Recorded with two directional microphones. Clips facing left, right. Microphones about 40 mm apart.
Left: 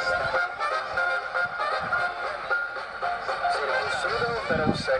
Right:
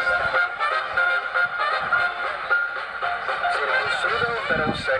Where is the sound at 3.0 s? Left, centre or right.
Right.